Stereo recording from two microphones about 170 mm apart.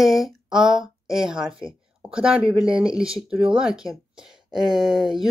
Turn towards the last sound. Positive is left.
turn(degrees=-5)  # may be behind; listen again after turning